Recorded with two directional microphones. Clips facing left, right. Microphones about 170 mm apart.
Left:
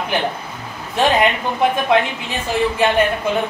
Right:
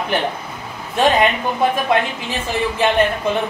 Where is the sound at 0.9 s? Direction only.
Centre (ahead or behind).